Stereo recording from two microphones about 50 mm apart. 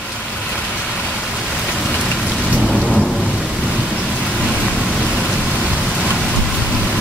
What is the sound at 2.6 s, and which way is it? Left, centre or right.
Thunder, centre.